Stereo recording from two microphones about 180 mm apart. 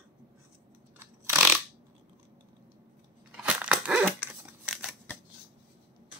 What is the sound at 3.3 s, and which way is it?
Dog, 5° right (ahead or behind).